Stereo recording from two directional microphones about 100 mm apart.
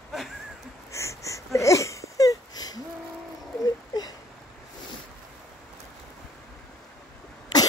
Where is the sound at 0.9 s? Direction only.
30° left (ahead or behind).